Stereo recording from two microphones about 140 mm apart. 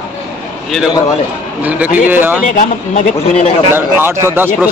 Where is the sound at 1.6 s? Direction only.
10° right (ahead or behind).